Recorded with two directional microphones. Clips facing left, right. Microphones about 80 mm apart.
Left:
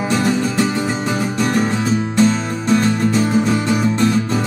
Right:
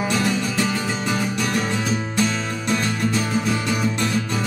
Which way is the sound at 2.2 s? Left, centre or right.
Left.